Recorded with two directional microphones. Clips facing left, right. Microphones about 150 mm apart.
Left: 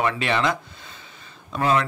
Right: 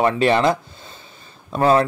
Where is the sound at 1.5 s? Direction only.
35° right (ahead or behind).